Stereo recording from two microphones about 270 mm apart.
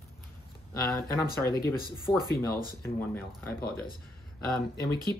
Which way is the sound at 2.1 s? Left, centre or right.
Centre.